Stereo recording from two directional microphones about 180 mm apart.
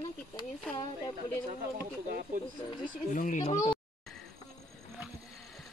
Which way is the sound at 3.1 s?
45° left (ahead or behind).